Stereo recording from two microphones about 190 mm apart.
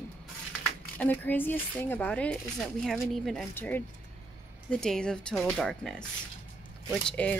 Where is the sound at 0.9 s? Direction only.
10° left (ahead or behind).